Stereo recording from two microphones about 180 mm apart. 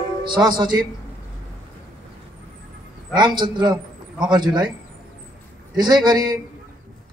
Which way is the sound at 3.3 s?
25° right (ahead or behind).